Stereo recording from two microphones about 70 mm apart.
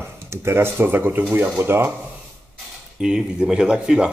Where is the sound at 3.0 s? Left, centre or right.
Centre.